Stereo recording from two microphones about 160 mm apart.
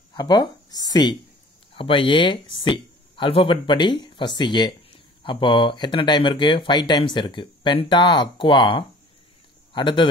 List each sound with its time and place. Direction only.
0.1 s speech: 25° left (ahead or behind)